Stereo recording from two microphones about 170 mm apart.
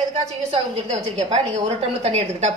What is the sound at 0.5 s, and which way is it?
A woman's voice, 40° right (ahead or behind).